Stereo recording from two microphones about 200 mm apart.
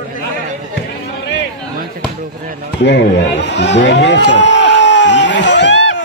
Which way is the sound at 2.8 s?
60° left (ahead or behind).